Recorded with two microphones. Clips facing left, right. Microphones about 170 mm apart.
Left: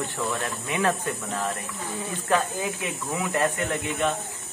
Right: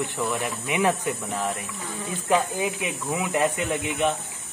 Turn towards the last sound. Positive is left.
turn(degrees=-20)  # may be behind; listen again after turning